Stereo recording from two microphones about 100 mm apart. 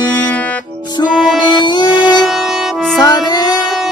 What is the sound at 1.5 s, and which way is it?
Music, 50° left (ahead or behind).